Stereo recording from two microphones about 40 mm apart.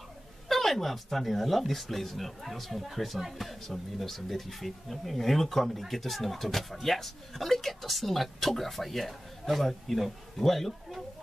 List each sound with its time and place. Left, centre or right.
0.5 s speech: centre